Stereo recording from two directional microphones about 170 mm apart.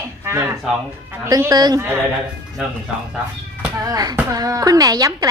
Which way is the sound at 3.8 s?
20° right (ahead or behind).